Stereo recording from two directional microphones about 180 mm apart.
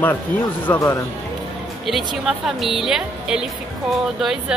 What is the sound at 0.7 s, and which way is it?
Speech, 15° left (ahead or behind).